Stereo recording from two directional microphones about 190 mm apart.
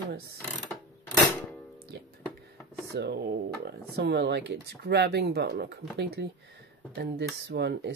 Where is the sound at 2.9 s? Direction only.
60° right (ahead or behind).